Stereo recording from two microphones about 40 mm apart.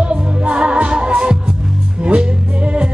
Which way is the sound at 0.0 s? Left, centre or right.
Right.